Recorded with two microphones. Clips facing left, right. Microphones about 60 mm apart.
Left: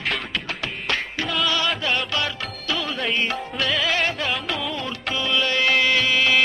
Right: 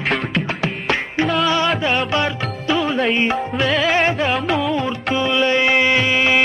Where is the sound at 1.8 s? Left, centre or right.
Right.